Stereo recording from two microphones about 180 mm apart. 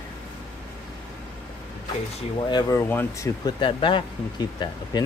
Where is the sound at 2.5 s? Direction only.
20° left (ahead or behind).